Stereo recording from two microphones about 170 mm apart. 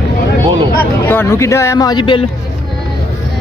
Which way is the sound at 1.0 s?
15° left (ahead or behind).